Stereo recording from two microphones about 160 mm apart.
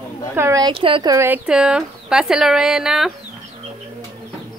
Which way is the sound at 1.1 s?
15° right (ahead or behind).